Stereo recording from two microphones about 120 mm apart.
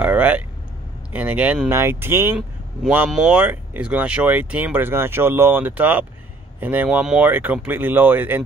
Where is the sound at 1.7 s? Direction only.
20° right (ahead or behind).